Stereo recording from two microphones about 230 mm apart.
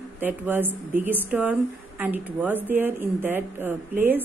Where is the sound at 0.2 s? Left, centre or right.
Centre.